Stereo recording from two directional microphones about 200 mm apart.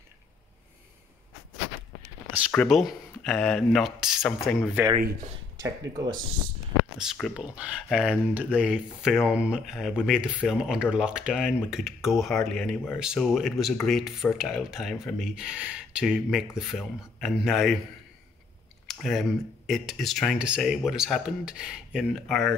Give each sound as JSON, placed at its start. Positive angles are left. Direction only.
{"t": 2.5, "sound": "speech", "side_deg": 0}
{"t": 5.6, "sound": "speech", "side_deg": -20}
{"t": 7.0, "sound": "speech", "side_deg": 0}
{"t": 18.9, "sound": "speech", "side_deg": 0}